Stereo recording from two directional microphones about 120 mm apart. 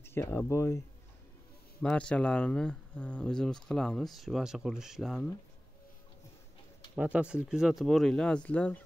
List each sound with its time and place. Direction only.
0.0 s speech: 20° left (ahead or behind)
1.8 s speech: 10° left (ahead or behind)
7.0 s speech: 10° right (ahead or behind); by 8.8 s 10° left (ahead or behind)